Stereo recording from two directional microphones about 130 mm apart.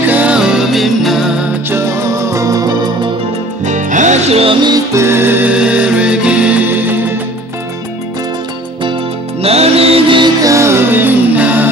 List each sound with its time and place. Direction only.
0.0 s music: 10° right (ahead or behind)
1.7 s music: 20° right (ahead or behind)
3.6 s music: 70° right (ahead or behind); by 4.6 s 50° right (ahead or behind)
4.6 s music: 25° right (ahead or behind)
9.4 s music: 50° right (ahead or behind)
10.4 s music: 25° right (ahead or behind)